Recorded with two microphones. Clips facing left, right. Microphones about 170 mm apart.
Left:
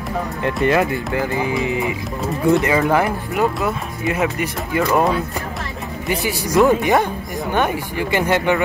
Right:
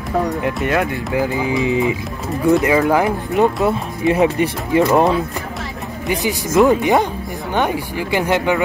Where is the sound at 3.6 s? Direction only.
30° right (ahead or behind).